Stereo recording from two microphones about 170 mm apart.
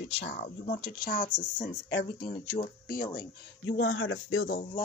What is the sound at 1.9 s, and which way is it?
Speech, 80° left.